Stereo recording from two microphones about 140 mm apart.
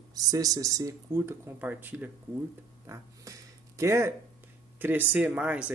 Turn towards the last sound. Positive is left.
turn(degrees=-10)  # may be behind; listen again after turning